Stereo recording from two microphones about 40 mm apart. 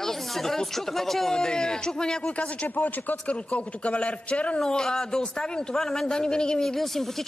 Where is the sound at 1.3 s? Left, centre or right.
Centre.